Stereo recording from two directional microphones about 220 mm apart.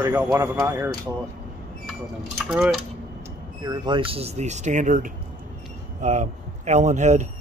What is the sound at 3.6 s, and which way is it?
Speech, 20° right (ahead or behind).